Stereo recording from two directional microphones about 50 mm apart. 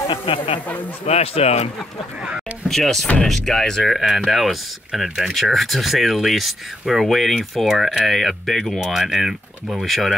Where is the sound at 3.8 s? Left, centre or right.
Centre.